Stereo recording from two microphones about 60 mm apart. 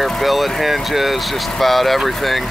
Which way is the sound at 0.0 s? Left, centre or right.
Centre.